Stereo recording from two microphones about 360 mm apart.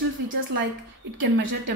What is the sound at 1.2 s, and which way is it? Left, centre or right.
Speech, right.